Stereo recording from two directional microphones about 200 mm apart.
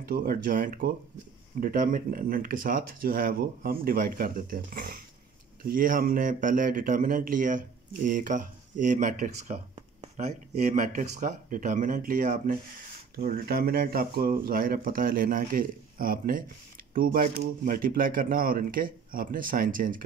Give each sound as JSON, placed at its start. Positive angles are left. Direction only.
{"t": 0.0, "sound": "speech", "side_deg": -45}